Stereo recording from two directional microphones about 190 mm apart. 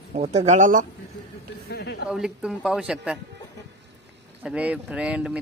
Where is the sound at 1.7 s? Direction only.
60° left (ahead or behind).